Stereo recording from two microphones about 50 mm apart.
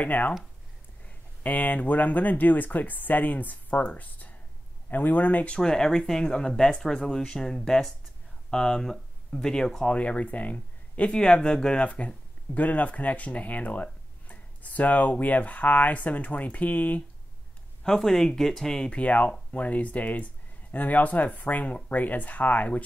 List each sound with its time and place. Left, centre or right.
0.0 s speech: left
5.5 s speech: centre
9.9 s speech: left
17.8 s speech: centre
18.9 s speech: left